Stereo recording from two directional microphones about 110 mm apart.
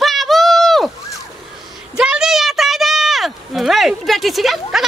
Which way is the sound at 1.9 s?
5° right (ahead or behind).